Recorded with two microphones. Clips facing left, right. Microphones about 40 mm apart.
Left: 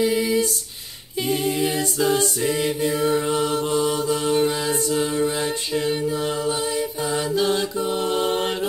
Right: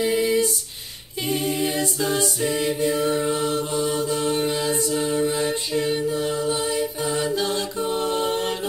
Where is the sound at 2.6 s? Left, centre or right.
Centre.